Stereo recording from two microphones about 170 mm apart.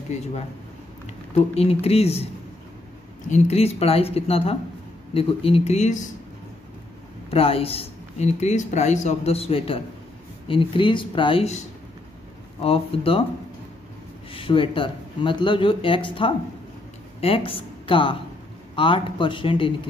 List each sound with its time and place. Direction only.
1.3 s speech: 35° left (ahead or behind)
3.3 s speech: 40° left (ahead or behind)
7.2 s speech: 35° left (ahead or behind)
12.6 s speech: 35° left (ahead or behind)
14.3 s a woman's voice: 30° left (ahead or behind)